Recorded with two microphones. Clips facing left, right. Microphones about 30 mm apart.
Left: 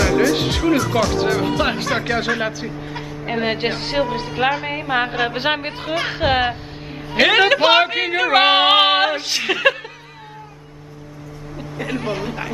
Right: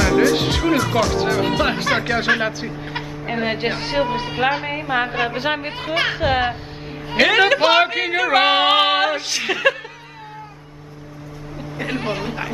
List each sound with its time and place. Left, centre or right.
0.0 s speech: centre
0.9 s speech: centre
3.3 s speech: centre
4.0 s speech: centre
4.6 s a sound: centre
5.3 s a man's voice: left
6.1 s a sound: centre
11.7 s speech: centre